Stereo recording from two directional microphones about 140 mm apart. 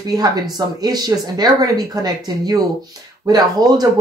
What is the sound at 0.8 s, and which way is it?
Speech, 30° right (ahead or behind).